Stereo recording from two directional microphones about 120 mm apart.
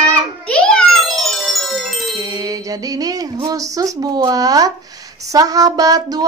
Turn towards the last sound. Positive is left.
turn(degrees=-30)  # may be behind; listen again after turning